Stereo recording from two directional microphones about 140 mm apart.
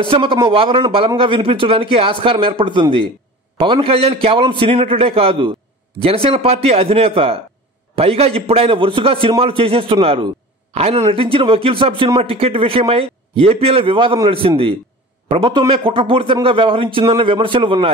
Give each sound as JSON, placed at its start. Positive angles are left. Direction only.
{"t": 0.0, "sound": "a man's voice", "side_deg": -40}